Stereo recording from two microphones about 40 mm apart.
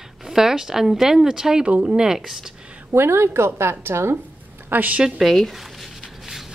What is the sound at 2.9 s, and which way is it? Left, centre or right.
A woman's voice, right.